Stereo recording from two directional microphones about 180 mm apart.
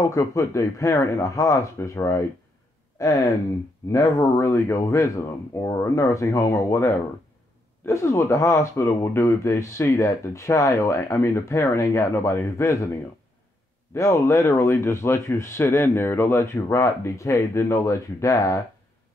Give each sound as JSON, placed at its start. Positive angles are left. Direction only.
{"t": 0.1, "sound": "speech", "side_deg": 15}